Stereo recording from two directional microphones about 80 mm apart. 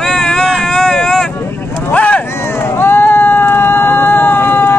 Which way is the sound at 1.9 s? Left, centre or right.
Centre.